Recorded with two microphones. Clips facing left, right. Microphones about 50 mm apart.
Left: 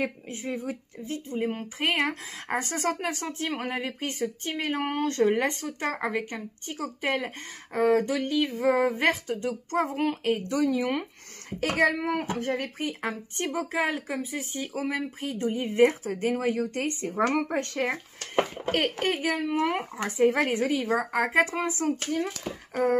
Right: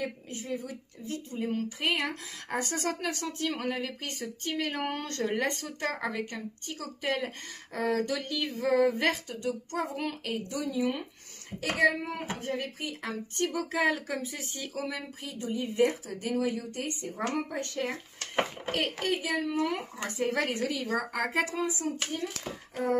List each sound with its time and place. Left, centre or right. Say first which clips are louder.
0.0 s speech: left 5 dB; left
10.5 s speech: left 3 dB; left
11.6 s speech: left 2 dB; left
13.0 s speech: left 1 dB; left
21.4 s speech: left 6 dB; left
21.6 s speech: left 5 dB; left